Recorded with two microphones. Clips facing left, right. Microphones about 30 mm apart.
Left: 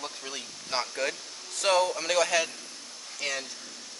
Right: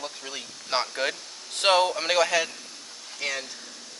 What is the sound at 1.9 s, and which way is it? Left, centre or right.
Speech, right.